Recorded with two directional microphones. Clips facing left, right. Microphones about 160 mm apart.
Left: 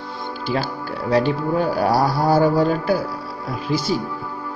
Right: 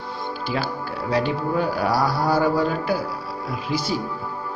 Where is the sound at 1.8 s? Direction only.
45° left (ahead or behind).